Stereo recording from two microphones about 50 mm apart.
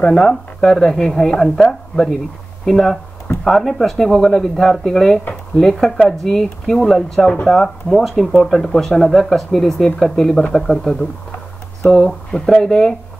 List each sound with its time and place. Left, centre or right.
0.0 s a woman's voice: centre
10.8 s speech: left
11.8 s a woman's voice: centre